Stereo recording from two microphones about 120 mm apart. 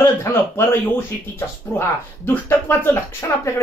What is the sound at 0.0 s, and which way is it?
Speech, 20° left (ahead or behind).